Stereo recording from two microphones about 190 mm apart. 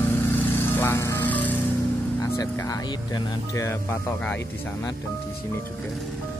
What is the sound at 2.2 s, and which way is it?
Speech, 20° left (ahead or behind).